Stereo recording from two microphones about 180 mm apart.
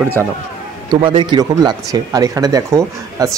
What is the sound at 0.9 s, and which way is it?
Speech, 25° right (ahead or behind).